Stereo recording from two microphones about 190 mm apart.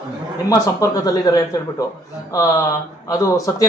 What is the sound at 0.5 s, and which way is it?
Speech, 20° left (ahead or behind).